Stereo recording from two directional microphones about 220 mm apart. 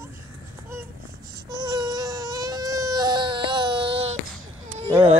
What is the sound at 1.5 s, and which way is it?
Baby cry, 20° right (ahead or behind).